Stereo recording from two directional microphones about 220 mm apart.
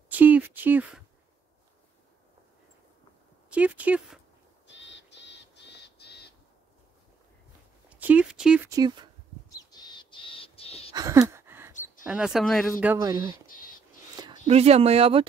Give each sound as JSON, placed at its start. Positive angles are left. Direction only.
{"t": 0.1, "sound": "a sound", "side_deg": -10}
{"t": 3.4, "sound": "speech", "side_deg": -5}
{"t": 4.6, "sound": "crow", "side_deg": 55}
{"t": 7.9, "sound": "speech", "side_deg": -5}
{"t": 8.6, "sound": "speech", "side_deg": -15}
{"t": 9.5, "sound": "crow", "side_deg": 20}
{"t": 10.9, "sound": "a sound", "side_deg": -15}
{"t": 12.0, "sound": "speech", "side_deg": 0}
{"t": 12.8, "sound": "speech", "side_deg": -15}
{"t": 14.2, "sound": "a sound", "side_deg": -15}
{"t": 14.5, "sound": "speech", "side_deg": -30}